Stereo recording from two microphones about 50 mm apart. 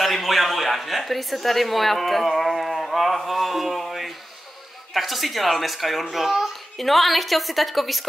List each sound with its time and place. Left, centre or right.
0.0 s a child's voice: centre